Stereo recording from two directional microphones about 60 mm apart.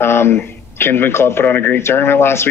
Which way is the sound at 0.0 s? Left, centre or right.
Left.